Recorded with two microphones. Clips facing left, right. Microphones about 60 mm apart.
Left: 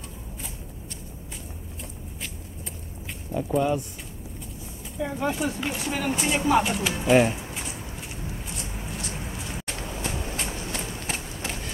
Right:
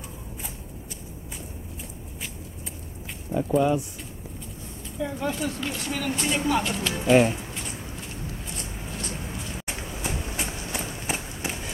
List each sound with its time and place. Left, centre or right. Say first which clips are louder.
3.3 s speech: right 2 dB; centre
4.9 s speech: left 1 dB; centre
6.7 s speech: even; centre
9.7 s run: even; centre